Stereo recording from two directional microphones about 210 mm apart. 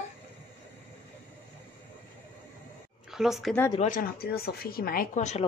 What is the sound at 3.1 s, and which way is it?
Speech, centre (ahead or behind).